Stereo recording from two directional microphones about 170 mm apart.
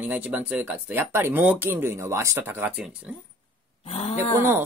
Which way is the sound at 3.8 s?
40° left (ahead or behind).